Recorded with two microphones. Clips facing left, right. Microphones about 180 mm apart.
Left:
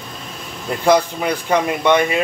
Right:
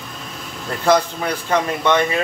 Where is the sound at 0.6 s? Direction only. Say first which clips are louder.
Left 2 dB; 15° left (ahead or behind).